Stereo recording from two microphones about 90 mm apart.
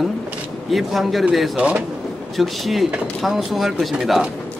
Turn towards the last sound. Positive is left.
turn(degrees=-5)  # may be behind; listen again after turning